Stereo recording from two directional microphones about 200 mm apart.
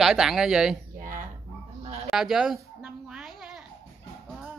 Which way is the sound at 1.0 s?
40° right (ahead or behind).